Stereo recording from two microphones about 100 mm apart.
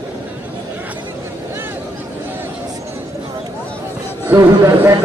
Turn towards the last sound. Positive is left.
turn(degrees=-25)  # may be behind; listen again after turning